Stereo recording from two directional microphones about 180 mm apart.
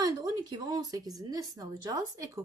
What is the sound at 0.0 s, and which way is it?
A woman's voice, 20° right (ahead or behind).